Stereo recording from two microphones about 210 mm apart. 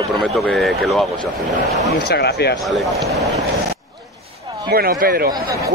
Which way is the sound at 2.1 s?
50° left (ahead or behind).